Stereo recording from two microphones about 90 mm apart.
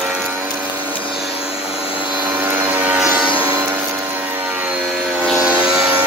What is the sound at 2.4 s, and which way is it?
Vehicle, 20° right (ahead or behind).